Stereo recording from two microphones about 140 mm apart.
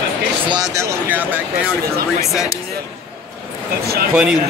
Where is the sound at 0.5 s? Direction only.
30° right (ahead or behind).